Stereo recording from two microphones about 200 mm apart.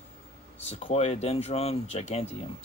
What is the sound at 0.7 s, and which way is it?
Speech, 30° left (ahead or behind).